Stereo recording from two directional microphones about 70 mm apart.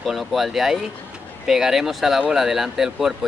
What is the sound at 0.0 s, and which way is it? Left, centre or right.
Speech, centre.